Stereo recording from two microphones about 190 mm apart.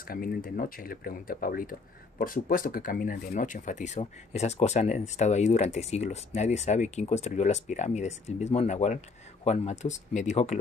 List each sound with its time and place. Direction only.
0.0 s speech: 50° left (ahead or behind)